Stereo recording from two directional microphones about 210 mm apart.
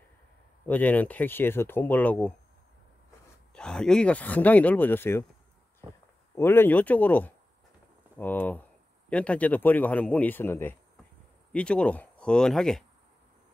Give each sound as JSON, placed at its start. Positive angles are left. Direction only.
{"t": 0.7, "sound": "a man's voice", "side_deg": 10}
{"t": 3.5, "sound": "a man's voice", "side_deg": 5}
{"t": 6.3, "sound": "a man's voice", "side_deg": 10}